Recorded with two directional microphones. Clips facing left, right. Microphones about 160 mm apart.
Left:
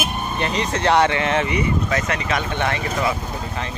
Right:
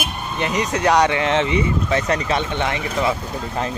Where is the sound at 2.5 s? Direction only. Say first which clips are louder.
Even; 20° right (ahead or behind).